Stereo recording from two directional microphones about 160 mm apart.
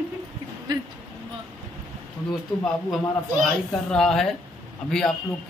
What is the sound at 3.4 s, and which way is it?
Speech, 5° left (ahead or behind).